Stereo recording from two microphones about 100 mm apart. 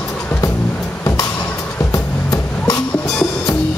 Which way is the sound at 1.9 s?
35° left (ahead or behind).